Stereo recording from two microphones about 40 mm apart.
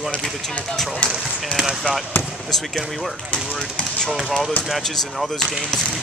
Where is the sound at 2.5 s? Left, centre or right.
Centre.